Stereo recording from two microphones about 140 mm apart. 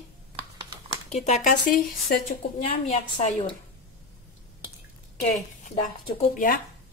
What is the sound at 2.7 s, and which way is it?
Speech, 50° left (ahead or behind).